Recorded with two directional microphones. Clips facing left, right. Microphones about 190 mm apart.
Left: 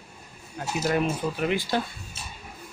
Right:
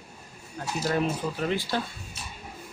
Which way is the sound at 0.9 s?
15° left (ahead or behind).